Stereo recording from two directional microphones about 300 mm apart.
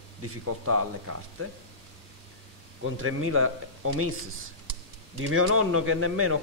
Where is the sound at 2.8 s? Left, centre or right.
Right.